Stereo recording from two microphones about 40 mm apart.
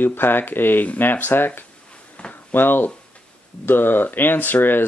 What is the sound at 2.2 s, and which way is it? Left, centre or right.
Drawer open or close, left.